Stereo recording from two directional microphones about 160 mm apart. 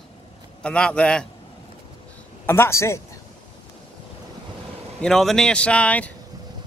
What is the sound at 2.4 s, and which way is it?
Speech, 15° left (ahead or behind).